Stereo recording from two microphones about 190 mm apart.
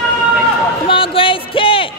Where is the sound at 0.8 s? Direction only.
30° left (ahead or behind).